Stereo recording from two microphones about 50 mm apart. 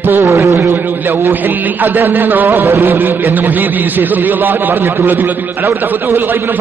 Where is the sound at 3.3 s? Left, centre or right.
Right.